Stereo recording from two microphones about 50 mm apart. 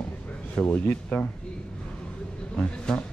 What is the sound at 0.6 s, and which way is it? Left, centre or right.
Speech, left.